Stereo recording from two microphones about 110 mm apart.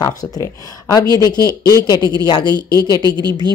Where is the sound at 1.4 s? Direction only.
30° right (ahead or behind).